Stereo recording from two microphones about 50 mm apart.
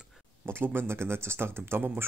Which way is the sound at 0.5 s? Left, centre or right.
Right.